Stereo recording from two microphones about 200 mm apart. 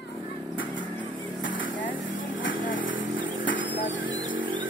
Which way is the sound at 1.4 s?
70° left (ahead or behind).